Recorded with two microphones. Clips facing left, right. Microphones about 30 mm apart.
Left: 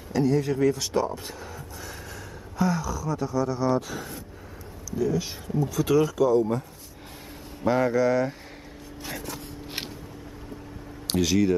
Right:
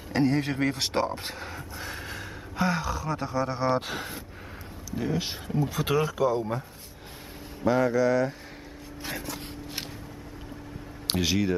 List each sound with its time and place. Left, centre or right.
0.1 s a man's voice: right
7.6 s speech: centre
9.0 s vehicle: centre
11.1 s speech: centre